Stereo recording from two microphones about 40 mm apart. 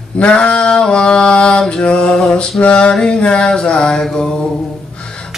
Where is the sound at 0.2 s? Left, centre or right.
Left.